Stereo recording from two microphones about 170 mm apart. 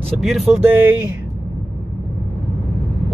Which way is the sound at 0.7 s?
10° right (ahead or behind).